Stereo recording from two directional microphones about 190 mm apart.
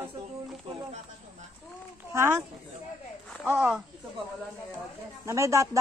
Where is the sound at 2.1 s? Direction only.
15° right (ahead or behind).